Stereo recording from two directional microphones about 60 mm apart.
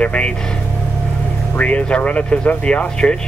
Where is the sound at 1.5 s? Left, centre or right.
Left.